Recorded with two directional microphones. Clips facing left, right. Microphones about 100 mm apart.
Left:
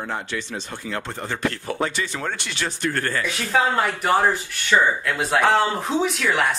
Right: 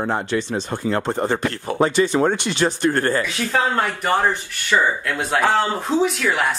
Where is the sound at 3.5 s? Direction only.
Centre (ahead or behind).